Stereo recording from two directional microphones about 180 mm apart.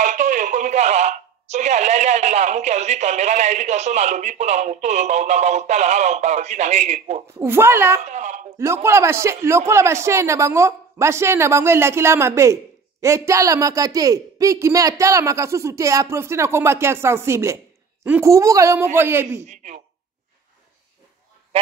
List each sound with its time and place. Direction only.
0.0 s speech: 45° right (ahead or behind)
7.3 s speech: 15° right (ahead or behind)
8.0 s speech: 40° right (ahead or behind)
8.5 s speech: 15° right (ahead or behind)
19.4 s speech: 40° right (ahead or behind)